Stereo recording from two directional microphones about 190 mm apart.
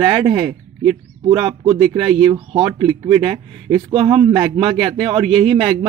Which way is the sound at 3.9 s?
30° right (ahead or behind).